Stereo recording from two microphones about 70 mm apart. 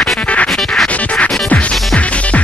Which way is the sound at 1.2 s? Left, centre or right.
Centre.